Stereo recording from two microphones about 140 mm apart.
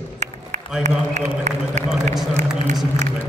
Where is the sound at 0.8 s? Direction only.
55° right (ahead or behind).